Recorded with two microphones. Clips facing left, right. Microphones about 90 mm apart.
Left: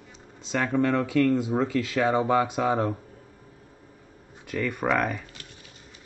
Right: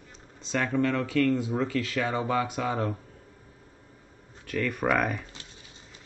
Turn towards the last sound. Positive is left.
turn(degrees=0)  # may be behind; listen again after turning